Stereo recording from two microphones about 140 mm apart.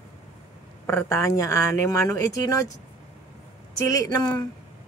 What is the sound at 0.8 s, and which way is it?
Speech, 20° left (ahead or behind).